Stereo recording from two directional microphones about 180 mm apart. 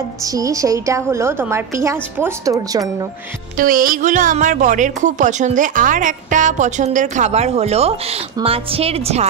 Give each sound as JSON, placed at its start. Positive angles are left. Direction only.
{"t": 0.2, "sound": "a woman's voice", "side_deg": -20}
{"t": 3.5, "sound": "speech", "side_deg": -50}